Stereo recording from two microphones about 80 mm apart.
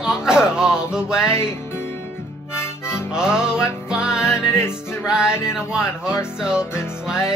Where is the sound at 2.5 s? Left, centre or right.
Left.